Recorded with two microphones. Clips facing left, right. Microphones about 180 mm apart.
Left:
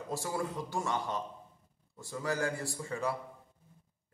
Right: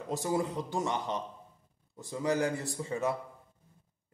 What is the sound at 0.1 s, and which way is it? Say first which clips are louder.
Speech: right 5 dB; 20° right (ahead or behind).